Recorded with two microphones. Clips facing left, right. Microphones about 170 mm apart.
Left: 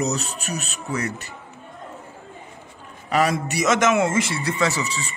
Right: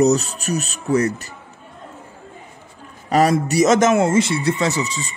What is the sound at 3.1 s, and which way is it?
Speech, 40° right (ahead or behind).